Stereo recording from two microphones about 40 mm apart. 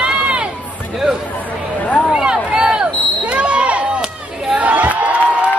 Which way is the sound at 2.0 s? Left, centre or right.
Centre.